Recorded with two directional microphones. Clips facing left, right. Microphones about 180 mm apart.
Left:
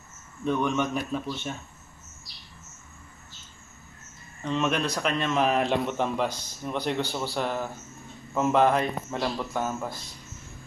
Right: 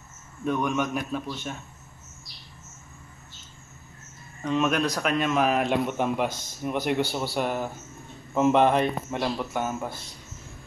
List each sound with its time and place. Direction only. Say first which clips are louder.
0.5 s a man's voice: even; 5° right (ahead or behind)
4.4 s a man's voice: right 2 dB; 5° right (ahead or behind)